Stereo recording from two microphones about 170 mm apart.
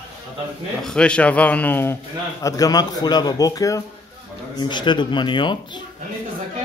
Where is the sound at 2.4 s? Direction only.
20° left (ahead or behind).